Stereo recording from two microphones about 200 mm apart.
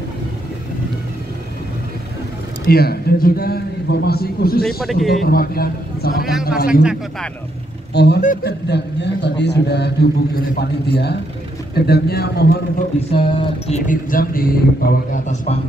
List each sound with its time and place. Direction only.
2.6 s a man's voice: 50° left (ahead or behind)
4.6 s a man's voice: centre (ahead or behind)
5.2 s a man's voice: 50° left (ahead or behind)
6.7 s a man's voice: 5° right (ahead or behind)
7.9 s speech: 55° left (ahead or behind)
8.2 s a man's voice: 40° left (ahead or behind)
8.6 s a man's voice: 55° left (ahead or behind)
13.1 s music: 25° left (ahead or behind)
13.8 s a man's voice: 45° left (ahead or behind)